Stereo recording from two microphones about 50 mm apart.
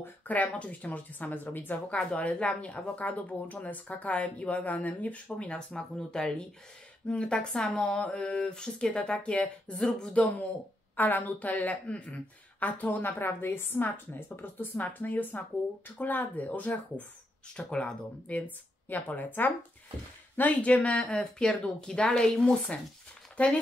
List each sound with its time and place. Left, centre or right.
0.3 s speech: left
1.9 s speech: left
5.7 s speech: centre
7.6 s speech: centre
8.0 s speech: left
13.0 s a woman's voice: left
17.6 s speech: centre
18.3 s speech: left; by 22.5 s centre
22.7 s speech: left